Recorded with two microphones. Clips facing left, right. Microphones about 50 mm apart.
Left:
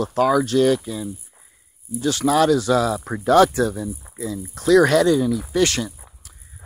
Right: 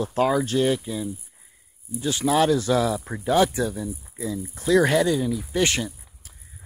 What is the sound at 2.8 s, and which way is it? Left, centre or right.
Speech, left.